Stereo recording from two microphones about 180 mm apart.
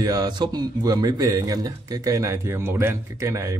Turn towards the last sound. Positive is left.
turn(degrees=-15)  # may be behind; listen again after turning